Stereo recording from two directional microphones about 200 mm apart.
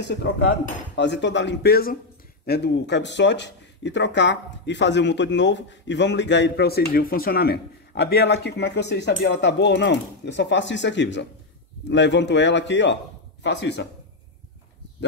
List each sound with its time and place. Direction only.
0.0 s speech: 60° left (ahead or behind)